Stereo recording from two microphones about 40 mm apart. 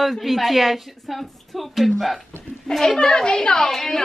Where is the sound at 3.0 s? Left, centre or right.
Left.